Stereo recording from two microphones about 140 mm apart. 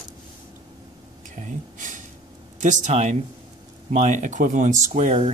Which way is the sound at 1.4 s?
65° right (ahead or behind).